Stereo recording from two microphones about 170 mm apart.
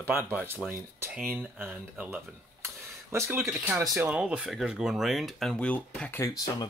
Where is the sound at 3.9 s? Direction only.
5° right (ahead or behind).